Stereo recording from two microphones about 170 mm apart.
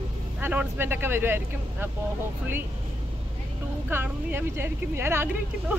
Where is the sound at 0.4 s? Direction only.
10° right (ahead or behind).